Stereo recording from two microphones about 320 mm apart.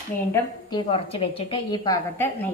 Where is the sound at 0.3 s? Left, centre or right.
Centre.